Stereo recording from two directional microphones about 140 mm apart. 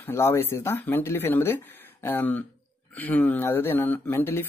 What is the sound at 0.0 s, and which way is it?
Speech, 20° left (ahead or behind).